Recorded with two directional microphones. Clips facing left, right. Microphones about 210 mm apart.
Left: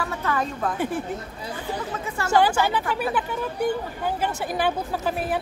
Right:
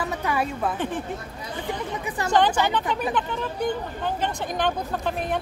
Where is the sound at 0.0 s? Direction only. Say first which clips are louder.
Right 1 dB; 15° right (ahead or behind).